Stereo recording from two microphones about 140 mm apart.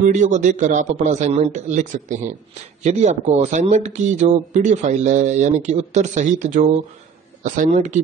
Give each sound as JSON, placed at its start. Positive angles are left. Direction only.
{"t": 0.0, "sound": "speech", "side_deg": -60}